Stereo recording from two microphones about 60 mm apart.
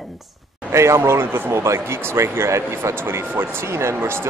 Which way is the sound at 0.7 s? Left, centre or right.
Right.